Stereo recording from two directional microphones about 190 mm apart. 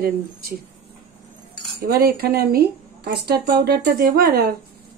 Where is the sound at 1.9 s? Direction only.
55° right (ahead or behind).